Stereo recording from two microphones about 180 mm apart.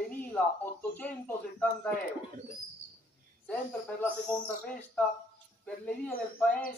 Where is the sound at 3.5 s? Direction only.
10° left (ahead or behind).